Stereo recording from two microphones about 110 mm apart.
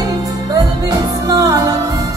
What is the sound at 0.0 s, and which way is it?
Music, 35° right (ahead or behind).